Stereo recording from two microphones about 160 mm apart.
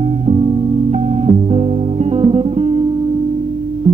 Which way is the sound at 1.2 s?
35° right (ahead or behind).